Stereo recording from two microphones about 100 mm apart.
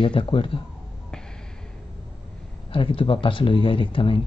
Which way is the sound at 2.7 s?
60° left (ahead or behind).